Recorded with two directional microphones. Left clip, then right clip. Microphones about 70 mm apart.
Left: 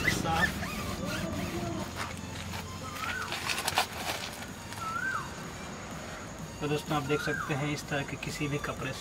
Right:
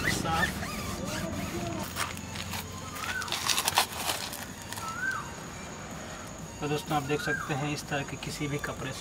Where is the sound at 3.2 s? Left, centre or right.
Right.